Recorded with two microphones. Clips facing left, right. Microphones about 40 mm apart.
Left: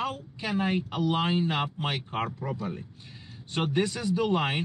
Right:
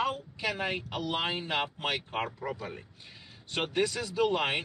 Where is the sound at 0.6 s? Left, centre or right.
Centre.